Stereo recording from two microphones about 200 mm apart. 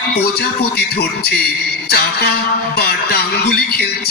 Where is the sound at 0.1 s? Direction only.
50° left (ahead or behind).